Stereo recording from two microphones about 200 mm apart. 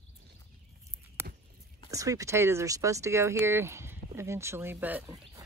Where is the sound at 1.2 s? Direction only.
15° right (ahead or behind).